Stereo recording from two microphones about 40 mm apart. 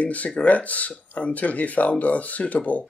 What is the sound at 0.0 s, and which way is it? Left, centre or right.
Speech, left.